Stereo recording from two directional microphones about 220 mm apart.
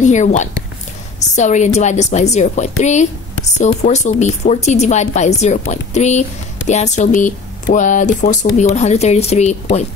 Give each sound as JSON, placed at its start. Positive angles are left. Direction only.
{"t": 0.0, "sound": "a woman's voice", "side_deg": 35}